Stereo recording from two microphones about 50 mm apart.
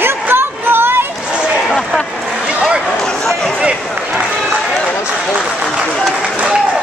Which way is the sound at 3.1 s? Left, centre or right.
Centre.